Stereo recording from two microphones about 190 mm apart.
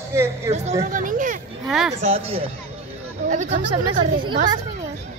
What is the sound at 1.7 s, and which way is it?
Speech, centre (ahead or behind).